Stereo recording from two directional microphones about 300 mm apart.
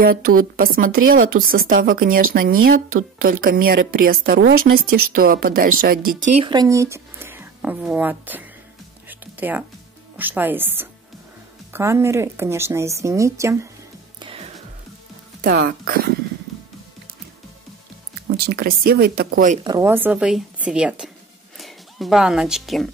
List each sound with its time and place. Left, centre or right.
0.0 s a woman's voice: right; by 8.5 s centre
9.1 s music: centre
10.1 s speech: centre
14.2 s music: centre
15.4 s a woman's voice: right
18.3 s speech: right
19.6 s speech: centre